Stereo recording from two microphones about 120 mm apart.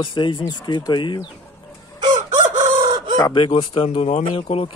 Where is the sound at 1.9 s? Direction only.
35° right (ahead or behind).